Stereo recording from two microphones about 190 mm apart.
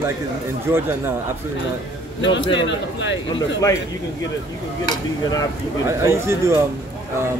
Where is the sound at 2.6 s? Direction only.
70° left (ahead or behind).